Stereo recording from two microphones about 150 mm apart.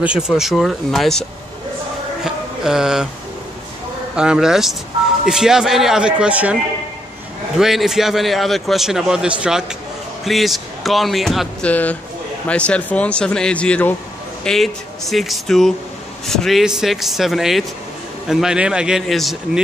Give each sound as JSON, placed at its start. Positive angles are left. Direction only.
{"t": 0.0, "sound": "a man's voice", "side_deg": -5}
{"t": 2.2, "sound": "a sound", "side_deg": -5}
{"t": 4.1, "sound": "a man's voice", "side_deg": -5}